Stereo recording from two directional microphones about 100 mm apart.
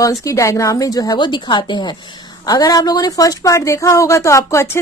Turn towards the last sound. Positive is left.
turn(degrees=30)  # may be behind; listen again after turning